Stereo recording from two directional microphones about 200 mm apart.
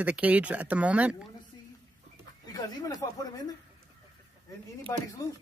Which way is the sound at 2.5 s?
20° left (ahead or behind).